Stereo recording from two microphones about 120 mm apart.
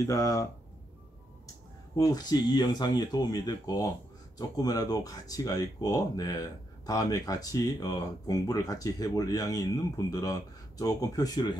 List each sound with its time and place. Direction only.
0.0 s speech: 30° left (ahead or behind)
2.0 s speech: 30° left (ahead or behind)